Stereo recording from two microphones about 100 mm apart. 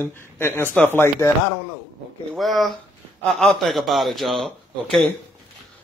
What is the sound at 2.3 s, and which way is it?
A man's voice, centre (ahead or behind).